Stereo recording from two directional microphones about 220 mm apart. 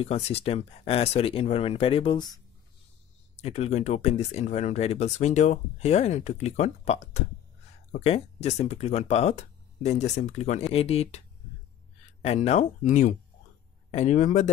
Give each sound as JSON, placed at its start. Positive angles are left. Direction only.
{"t": 0.0, "sound": "speech", "side_deg": 25}